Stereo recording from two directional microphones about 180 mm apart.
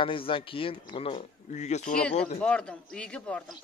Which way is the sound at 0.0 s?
30° left (ahead or behind).